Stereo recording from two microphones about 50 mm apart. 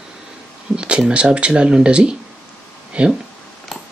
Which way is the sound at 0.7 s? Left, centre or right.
Centre.